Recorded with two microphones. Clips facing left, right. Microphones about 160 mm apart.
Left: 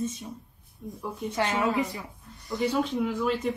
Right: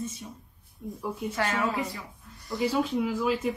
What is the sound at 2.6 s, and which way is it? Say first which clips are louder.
Speech: even; centre (ahead or behind).